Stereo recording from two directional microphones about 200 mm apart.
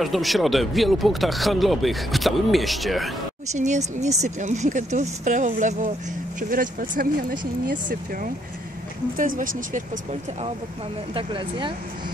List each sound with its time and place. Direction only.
0.0 s speech: centre (ahead or behind)
3.5 s speech: 35° right (ahead or behind)
11.1 s speech: 25° right (ahead or behind)